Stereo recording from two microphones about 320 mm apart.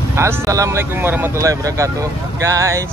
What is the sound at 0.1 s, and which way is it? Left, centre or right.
Speech, centre.